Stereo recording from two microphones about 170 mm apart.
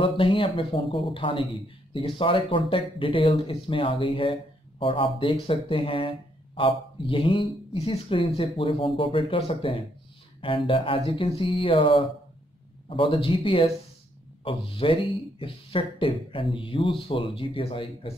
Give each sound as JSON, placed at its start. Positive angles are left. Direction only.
{"t": 0.0, "sound": "speech", "side_deg": 30}
{"t": 12.9, "sound": "speech", "side_deg": 30}